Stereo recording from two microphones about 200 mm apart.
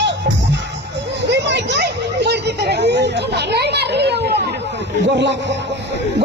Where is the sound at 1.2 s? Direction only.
60° right (ahead or behind).